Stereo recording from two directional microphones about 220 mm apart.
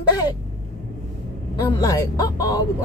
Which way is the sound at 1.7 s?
15° left (ahead or behind).